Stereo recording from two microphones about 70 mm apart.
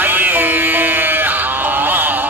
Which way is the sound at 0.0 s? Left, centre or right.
Right.